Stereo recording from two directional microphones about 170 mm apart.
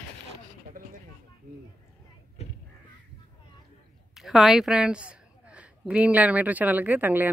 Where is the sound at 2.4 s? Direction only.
40° left (ahead or behind).